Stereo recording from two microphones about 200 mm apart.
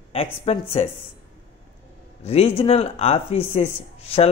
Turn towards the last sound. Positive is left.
turn(degrees=30)  # may be behind; listen again after turning